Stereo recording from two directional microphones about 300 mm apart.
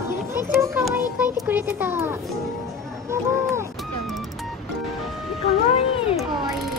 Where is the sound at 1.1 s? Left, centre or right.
Centre.